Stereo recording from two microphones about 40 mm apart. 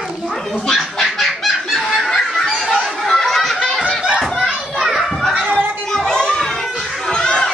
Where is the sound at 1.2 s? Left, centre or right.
Centre.